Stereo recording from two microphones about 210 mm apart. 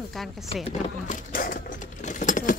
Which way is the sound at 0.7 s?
35° left (ahead or behind).